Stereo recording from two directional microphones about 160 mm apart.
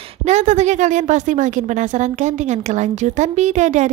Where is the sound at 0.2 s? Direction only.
45° right (ahead or behind).